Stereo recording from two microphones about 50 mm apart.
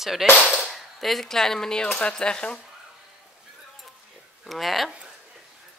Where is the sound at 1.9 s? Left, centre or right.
Left.